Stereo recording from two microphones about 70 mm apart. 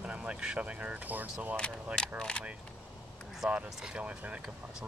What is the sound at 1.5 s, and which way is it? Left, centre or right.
Speech, centre.